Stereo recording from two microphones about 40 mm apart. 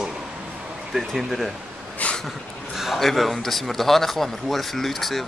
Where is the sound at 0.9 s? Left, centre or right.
Centre.